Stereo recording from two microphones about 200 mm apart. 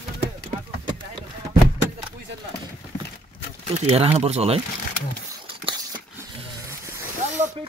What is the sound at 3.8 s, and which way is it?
Speech, 30° right (ahead or behind).